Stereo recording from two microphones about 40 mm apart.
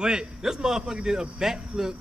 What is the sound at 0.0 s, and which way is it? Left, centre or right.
Speech, centre.